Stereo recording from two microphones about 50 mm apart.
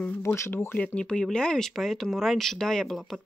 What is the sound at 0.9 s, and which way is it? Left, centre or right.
Speech, centre.